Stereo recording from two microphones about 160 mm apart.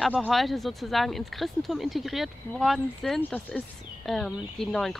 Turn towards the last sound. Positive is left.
turn(degrees=5)  # may be behind; listen again after turning